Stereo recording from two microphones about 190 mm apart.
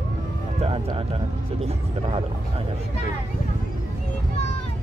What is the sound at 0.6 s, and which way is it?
Speech, 30° right (ahead or behind).